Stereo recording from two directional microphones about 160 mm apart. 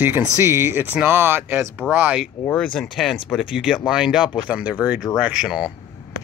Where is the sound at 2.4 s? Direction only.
10° left (ahead or behind).